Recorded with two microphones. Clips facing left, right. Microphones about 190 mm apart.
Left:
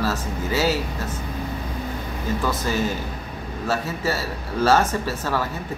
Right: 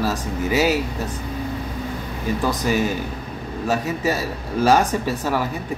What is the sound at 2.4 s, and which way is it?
Speech, 15° right (ahead or behind).